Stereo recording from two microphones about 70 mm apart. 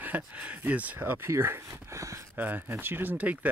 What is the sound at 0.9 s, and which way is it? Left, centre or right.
Speech, right.